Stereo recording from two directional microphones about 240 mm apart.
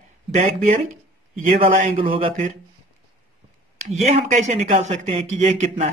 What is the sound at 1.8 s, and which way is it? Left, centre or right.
Speech, right.